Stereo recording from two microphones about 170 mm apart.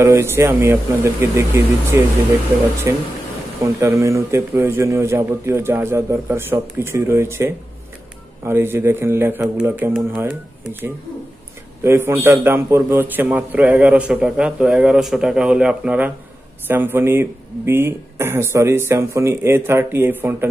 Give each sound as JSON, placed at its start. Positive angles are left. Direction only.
{"t": 0.0, "sound": "a man's voice", "side_deg": -15}
{"t": 11.8, "sound": "a man's voice", "side_deg": -15}